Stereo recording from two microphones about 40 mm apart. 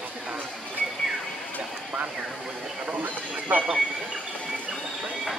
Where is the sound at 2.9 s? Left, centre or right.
Right.